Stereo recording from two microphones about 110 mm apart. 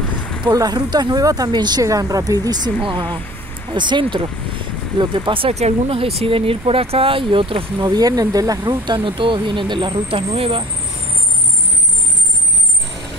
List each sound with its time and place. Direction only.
0.5 s speech: 35° right (ahead or behind)
2.8 s speech: 50° right (ahead or behind)
5.5 s speech: 80° right; by 7.6 s 50° right (ahead or behind)
7.8 s speech: 35° right (ahead or behind); by 10.6 s 55° right (ahead or behind)